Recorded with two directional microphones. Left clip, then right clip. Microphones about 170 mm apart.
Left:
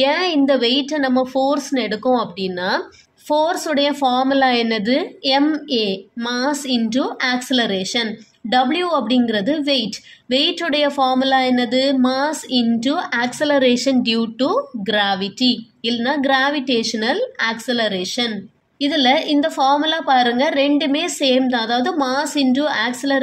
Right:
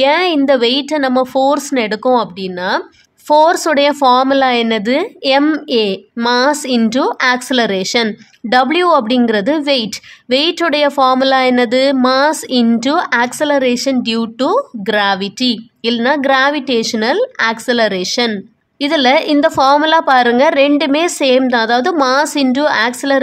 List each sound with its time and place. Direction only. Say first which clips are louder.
0.0 s a woman's voice: right 5 dB; 25° right (ahead or behind)
3.3 s a woman's voice: right 8 dB; 35° right (ahead or behind)